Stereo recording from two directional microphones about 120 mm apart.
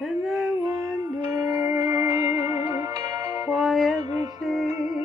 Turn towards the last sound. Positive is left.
turn(degrees=0)  # may be behind; listen again after turning